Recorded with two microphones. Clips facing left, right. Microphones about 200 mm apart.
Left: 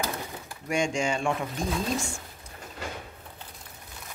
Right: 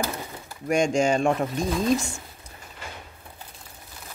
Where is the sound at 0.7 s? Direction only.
40° right (ahead or behind).